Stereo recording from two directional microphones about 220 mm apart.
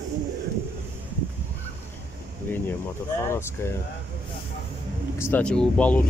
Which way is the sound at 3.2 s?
10° left (ahead or behind).